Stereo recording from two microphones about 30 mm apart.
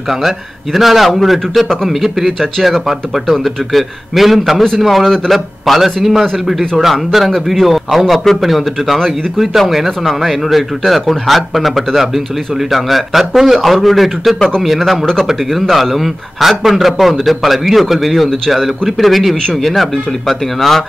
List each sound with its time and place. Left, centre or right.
0.7 s speech: centre
16.3 s speech: centre